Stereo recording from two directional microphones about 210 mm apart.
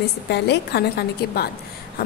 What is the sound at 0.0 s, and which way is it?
A woman's voice, 50° left (ahead or behind).